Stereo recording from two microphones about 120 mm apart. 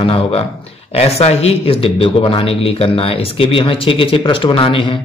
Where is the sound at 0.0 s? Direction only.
50° left (ahead or behind).